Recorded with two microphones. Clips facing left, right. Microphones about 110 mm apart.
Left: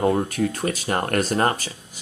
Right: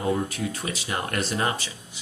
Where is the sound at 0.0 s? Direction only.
50° left (ahead or behind).